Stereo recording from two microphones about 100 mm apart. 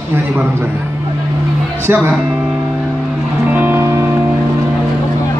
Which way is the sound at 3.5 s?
20° right (ahead or behind).